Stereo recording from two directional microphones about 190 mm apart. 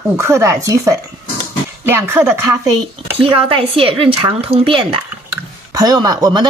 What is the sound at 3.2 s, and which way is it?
Speech, 30° right (ahead or behind).